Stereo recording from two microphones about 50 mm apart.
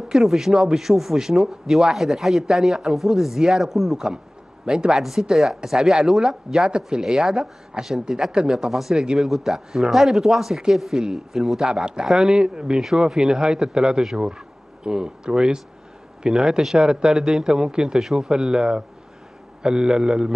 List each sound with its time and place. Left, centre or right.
0.1 s speech: centre
4.6 s speech: centre